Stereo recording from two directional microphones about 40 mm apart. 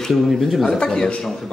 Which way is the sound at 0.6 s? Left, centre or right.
Centre.